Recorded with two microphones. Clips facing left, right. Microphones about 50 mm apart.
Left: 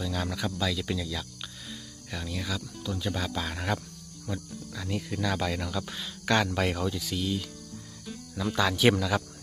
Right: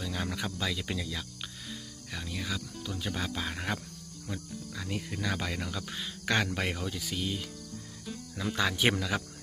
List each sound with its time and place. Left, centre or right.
0.0 s speech: centre
1.7 s speech: centre
8.1 s cricket: centre
8.5 s speech: centre